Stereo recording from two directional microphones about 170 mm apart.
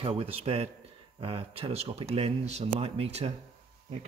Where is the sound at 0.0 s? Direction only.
35° right (ahead or behind).